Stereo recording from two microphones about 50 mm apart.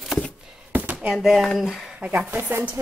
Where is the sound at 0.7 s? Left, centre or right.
Right.